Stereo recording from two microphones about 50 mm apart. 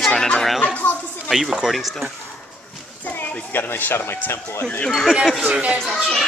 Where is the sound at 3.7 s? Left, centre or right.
Left.